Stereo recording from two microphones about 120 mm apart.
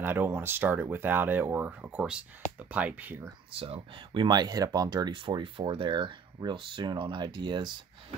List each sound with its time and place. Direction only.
0.0 s speech: 20° right (ahead or behind)
3.5 s speech: 50° right (ahead or behind)